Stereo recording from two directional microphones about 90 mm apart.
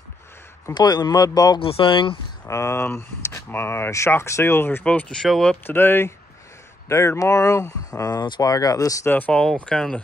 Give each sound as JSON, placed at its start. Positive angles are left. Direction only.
{"t": 0.7, "sound": "speech", "side_deg": 50}
{"t": 1.6, "sound": "speech", "side_deg": 85}
{"t": 2.4, "sound": "speech", "side_deg": 35}
{"t": 4.8, "sound": "speech", "side_deg": 15}
{"t": 5.7, "sound": "speech", "side_deg": 25}
{"t": 9.1, "sound": "speech", "side_deg": 20}